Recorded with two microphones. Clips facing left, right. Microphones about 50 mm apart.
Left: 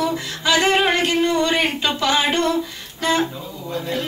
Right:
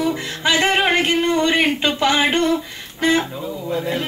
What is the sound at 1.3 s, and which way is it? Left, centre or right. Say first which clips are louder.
Speech: right 2 dB; right.